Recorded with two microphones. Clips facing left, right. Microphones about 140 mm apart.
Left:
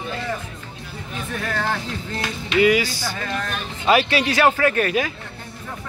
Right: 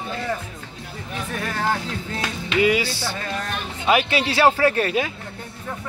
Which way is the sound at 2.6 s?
30° right (ahead or behind).